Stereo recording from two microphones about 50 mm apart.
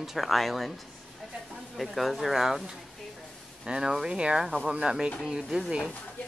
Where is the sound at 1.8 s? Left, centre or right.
Centre.